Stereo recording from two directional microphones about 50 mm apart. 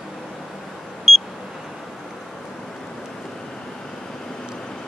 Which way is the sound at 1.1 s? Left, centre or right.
Centre.